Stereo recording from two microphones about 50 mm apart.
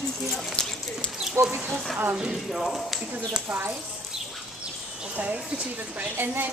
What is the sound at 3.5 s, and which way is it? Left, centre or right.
Speech, right.